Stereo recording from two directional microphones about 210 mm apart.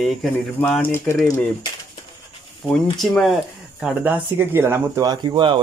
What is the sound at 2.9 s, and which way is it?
Speech, centre (ahead or behind).